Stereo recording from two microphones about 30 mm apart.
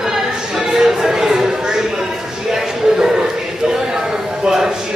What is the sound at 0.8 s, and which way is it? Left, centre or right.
Music, centre.